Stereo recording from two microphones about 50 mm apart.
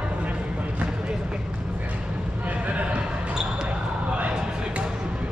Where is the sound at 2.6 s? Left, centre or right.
Right.